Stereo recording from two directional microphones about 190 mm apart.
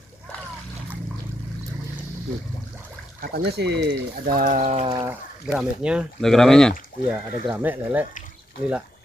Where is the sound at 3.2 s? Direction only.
60° right (ahead or behind); by 4.8 s 40° right (ahead or behind).